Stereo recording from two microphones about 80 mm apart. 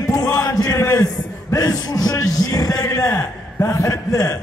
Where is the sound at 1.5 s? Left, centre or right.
Left.